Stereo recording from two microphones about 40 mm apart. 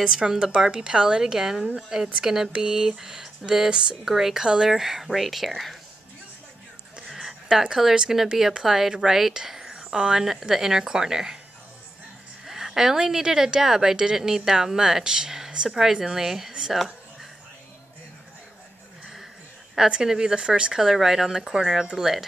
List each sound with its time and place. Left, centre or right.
0.0 s a woman's voice: centre
7.1 s speech: centre
12.4 s a woman's voice: centre
16.7 s a sound: centre
19.9 s speech: centre
20.3 s a woman's voice: right
20.8 s speech: centre